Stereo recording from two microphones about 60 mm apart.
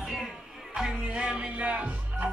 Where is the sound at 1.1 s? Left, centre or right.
Centre.